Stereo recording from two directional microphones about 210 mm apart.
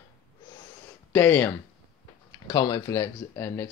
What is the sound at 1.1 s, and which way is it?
Speech, 10° left (ahead or behind).